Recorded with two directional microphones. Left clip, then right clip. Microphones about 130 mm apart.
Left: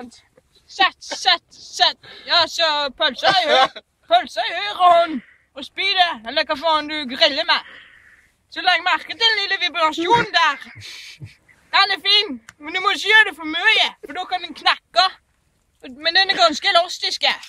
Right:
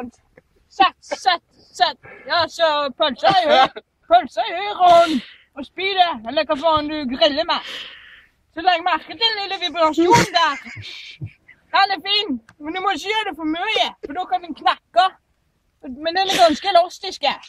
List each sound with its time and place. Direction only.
1.2 s a woman's voice: 15° left (ahead or behind)
2.0 s speech: 40° left (ahead or behind)
2.2 s a woman's voice: 15° left (ahead or behind)
3.1 s speech: 40° left (ahead or behind)
5.1 s speech: 25° right (ahead or behind)
5.5 s speech: 30° left (ahead or behind)
7.6 s a sound: 30° right (ahead or behind)
8.5 s a woman's voice: 20° left (ahead or behind)
16.4 s speech: 25° left (ahead or behind)
17.2 s speech: 20° left (ahead or behind)